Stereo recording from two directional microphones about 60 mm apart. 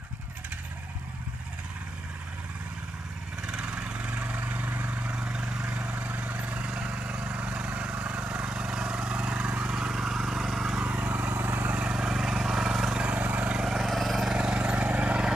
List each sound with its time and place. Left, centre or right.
3.4 s vehicle: centre
5.1 s vehicle: centre
10.9 s vehicle: right
13.0 s vehicle: right
13.7 s vehicle: centre; by 15.3 s right